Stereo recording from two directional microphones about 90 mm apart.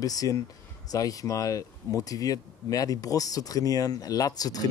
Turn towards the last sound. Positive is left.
turn(degrees=45)  # may be behind; listen again after turning